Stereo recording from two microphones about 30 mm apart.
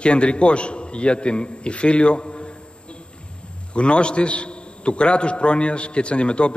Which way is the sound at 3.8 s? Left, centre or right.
Left.